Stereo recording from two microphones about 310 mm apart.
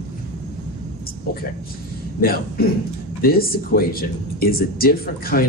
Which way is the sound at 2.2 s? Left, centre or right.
Left.